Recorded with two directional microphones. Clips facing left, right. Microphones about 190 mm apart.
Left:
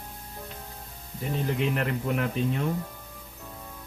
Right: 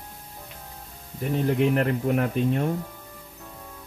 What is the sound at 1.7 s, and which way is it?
Speech, 45° right (ahead or behind).